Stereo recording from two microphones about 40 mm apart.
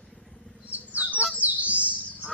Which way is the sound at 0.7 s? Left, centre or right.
Right.